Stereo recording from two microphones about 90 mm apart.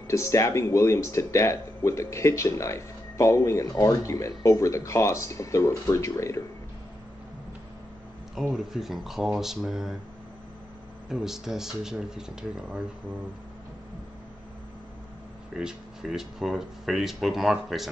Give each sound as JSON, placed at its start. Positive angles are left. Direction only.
{"t": 0.1, "sound": "speech", "side_deg": 35}
{"t": 8.4, "sound": "speech", "side_deg": -5}
{"t": 11.1, "sound": "speech", "side_deg": -5}
{"t": 15.5, "sound": "speech", "side_deg": -5}